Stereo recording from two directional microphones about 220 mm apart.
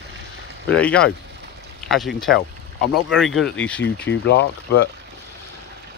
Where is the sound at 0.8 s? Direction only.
5° left (ahead or behind).